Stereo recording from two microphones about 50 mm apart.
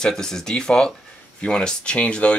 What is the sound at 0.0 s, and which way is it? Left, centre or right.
Speech, centre.